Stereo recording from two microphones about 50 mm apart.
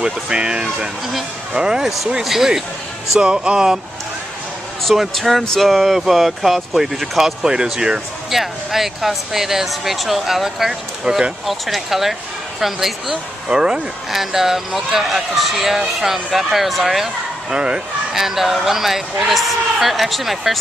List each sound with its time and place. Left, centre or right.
0.0 s speech: centre
3.2 s speech: centre
4.8 s speech: centre
11.4 s speech: centre
18.1 s speech: centre